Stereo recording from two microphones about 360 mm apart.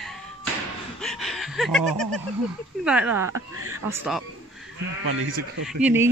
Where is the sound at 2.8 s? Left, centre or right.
Centre.